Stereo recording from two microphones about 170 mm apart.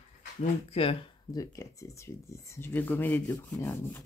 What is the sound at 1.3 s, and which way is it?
Speech, 20° left (ahead or behind).